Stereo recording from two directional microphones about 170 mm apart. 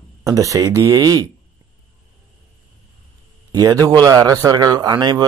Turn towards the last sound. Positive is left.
turn(degrees=-25)  # may be behind; listen again after turning